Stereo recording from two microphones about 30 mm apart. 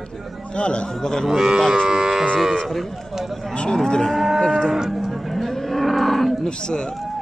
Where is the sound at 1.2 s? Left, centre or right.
Centre.